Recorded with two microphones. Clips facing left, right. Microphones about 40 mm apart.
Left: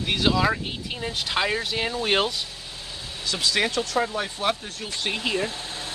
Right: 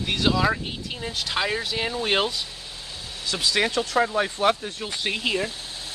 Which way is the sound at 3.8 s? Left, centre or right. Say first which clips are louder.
Right 3 dB; centre.